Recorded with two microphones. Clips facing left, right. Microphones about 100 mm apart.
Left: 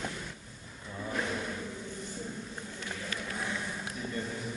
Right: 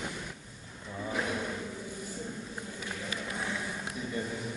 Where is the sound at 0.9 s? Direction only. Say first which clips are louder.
Right 1 dB; 5° right (ahead or behind).